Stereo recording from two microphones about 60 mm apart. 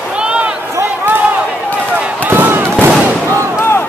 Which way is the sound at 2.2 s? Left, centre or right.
Right.